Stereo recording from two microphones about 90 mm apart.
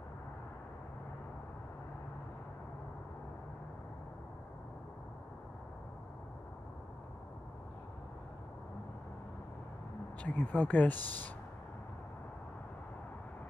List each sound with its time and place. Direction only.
10.2 s speech: 15° left (ahead or behind)